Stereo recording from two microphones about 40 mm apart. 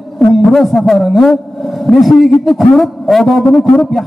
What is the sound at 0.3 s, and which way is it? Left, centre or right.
A man's voice, centre.